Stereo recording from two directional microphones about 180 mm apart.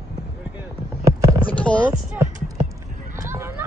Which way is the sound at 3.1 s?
15° right (ahead or behind).